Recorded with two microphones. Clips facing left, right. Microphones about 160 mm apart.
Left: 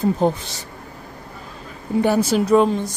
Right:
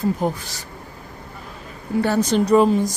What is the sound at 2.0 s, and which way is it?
Speech, 10° left (ahead or behind).